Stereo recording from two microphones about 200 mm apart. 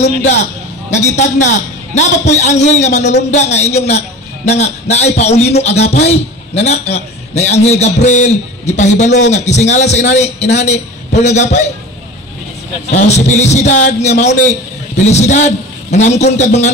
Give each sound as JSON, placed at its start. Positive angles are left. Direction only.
{"t": 0.8, "sound": "a man's voice", "side_deg": 35}
{"t": 12.9, "sound": "a man's voice", "side_deg": 35}